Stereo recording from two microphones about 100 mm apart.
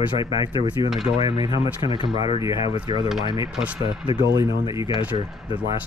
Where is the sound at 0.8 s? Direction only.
35° right (ahead or behind).